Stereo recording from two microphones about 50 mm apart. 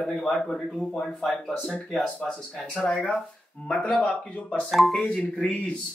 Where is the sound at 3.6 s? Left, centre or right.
Left.